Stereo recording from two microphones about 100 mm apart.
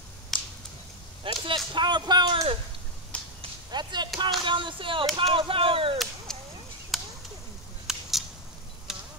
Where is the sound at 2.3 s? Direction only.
75° right (ahead or behind).